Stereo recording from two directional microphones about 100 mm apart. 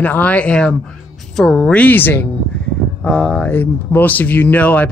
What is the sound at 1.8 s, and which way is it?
Speech, 20° left (ahead or behind).